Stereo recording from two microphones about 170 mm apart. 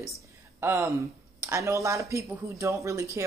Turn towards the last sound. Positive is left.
turn(degrees=-20)  # may be behind; listen again after turning